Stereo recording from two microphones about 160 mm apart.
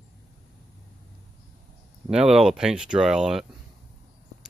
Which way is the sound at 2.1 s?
5° right (ahead or behind).